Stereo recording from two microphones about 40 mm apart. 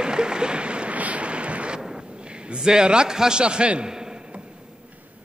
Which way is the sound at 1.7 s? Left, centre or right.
Centre.